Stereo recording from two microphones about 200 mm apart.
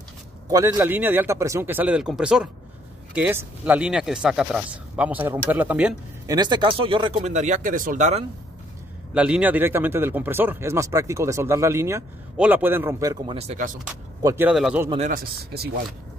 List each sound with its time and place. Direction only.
0.5 s speech: 10° right (ahead or behind)
6.2 s speech: 20° right (ahead or behind); by 8.2 s 40° right (ahead or behind)
9.1 s speech: 5° right (ahead or behind)
13.4 s speech: 35° right (ahead or behind)
14.2 s speech: 10° right (ahead or behind)
15.0 s speech: 50° right (ahead or behind)